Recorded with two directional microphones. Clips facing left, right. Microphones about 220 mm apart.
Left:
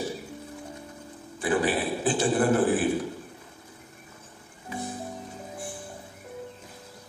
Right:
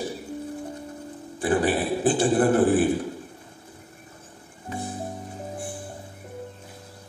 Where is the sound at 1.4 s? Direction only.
50° right (ahead or behind).